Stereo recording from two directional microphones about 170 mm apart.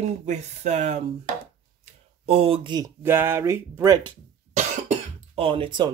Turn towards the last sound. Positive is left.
turn(degrees=-30)  # may be behind; listen again after turning